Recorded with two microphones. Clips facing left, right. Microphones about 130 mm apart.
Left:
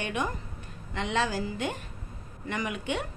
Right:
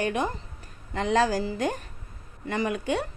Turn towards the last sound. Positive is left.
turn(degrees=-35)  # may be behind; listen again after turning